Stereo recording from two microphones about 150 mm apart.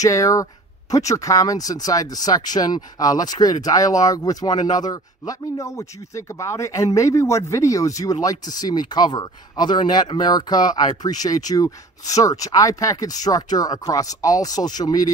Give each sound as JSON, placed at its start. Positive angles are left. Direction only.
{"t": 0.0, "sound": "speech", "side_deg": 20}